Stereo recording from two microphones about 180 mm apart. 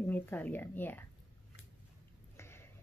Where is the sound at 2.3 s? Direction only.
15° left (ahead or behind).